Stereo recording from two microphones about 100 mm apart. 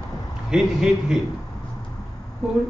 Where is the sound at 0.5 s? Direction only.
5° right (ahead or behind).